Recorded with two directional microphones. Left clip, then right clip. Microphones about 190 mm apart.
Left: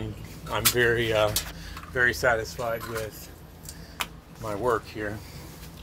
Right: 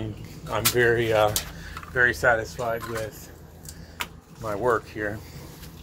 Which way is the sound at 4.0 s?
15° left (ahead or behind).